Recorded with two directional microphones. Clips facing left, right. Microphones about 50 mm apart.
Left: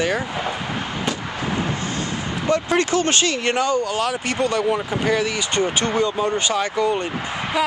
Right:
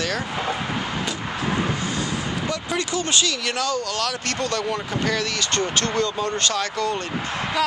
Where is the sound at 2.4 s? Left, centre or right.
Left.